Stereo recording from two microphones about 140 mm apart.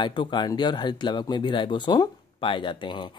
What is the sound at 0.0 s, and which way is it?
Speech, 35° left (ahead or behind).